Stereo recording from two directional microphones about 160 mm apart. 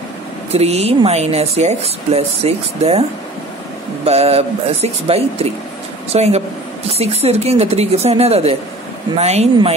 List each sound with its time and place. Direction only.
0.5 s speech: 40° right (ahead or behind)
4.0 s speech: 40° right (ahead or behind)